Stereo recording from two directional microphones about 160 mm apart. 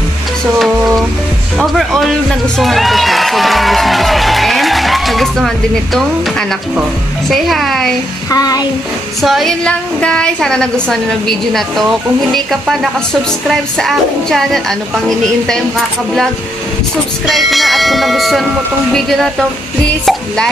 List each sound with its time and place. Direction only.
0.6 s a woman's voice: centre (ahead or behind)
2.6 s music: centre (ahead or behind)
6.8 s a woman's voice: centre (ahead or behind)
8.3 s music: 25° left (ahead or behind)
9.2 s a woman's voice: centre (ahead or behind)
17.3 s a woman's voice: centre (ahead or behind)